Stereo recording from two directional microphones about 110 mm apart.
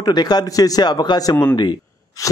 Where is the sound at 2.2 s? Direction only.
30° left (ahead or behind).